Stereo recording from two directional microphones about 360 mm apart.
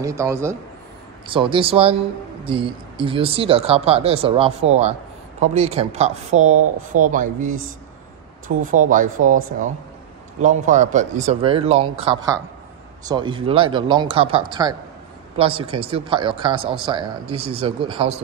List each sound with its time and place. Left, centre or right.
0.0 s speech: centre
8.6 s speech: right
10.4 s speech: right